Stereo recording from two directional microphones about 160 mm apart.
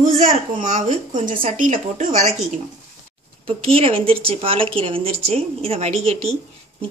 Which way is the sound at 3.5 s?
35° right (ahead or behind).